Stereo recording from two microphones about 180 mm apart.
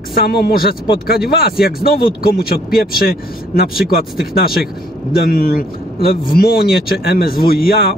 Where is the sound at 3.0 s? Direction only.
55° left (ahead or behind).